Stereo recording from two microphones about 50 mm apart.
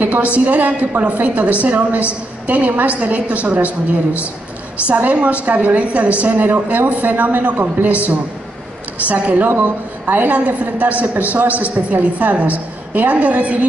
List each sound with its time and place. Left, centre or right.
0.0 s a woman's voice: right
4.8 s a woman's voice: right
9.1 s a woman's voice: right